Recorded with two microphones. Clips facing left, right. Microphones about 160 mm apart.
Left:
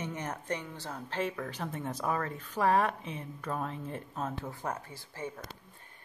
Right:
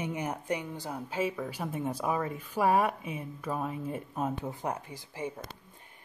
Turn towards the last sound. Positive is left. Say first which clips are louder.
# right 3 dB
turn(degrees=-15)  # may be behind; listen again after turning